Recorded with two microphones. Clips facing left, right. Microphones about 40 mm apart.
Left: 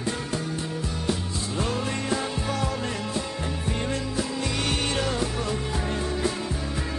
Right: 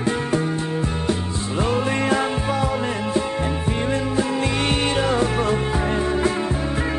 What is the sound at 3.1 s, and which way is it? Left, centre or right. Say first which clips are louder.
Music: right 8 dB; right.